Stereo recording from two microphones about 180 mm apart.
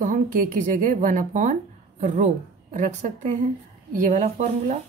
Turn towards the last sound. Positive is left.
turn(degrees=-40)  # may be behind; listen again after turning